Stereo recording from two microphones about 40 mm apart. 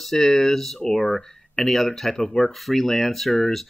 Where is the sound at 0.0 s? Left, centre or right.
Centre.